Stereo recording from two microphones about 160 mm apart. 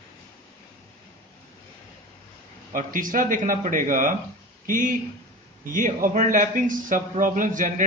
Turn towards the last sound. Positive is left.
turn(degrees=-55)  # may be behind; listen again after turning